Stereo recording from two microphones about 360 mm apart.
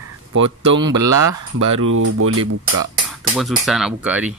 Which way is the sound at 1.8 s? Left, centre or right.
Right.